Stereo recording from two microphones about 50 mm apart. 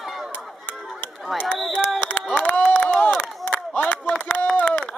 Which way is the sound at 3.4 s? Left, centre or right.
Left.